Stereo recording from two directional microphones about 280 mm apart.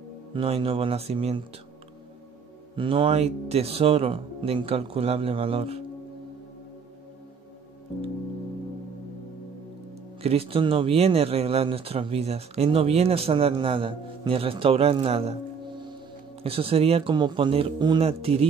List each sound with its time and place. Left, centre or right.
0.3 s speech: centre
2.7 s speech: centre
10.2 s speech: right
16.4 s speech: centre